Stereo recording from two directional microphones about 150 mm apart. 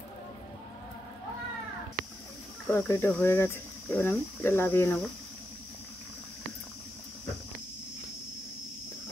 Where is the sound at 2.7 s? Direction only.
15° left (ahead or behind).